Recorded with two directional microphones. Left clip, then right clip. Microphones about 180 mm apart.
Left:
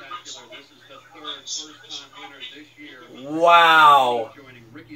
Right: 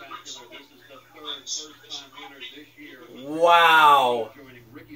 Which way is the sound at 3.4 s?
25° right (ahead or behind).